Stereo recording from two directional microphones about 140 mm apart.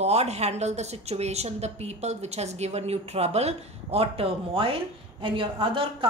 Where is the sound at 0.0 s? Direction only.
50° right (ahead or behind).